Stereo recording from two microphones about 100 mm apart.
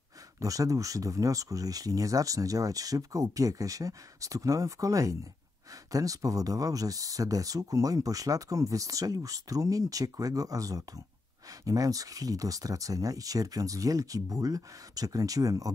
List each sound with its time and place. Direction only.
0.4 s speech: 35° right (ahead or behind)